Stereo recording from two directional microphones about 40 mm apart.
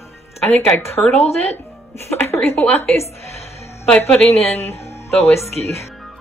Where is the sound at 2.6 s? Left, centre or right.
Left.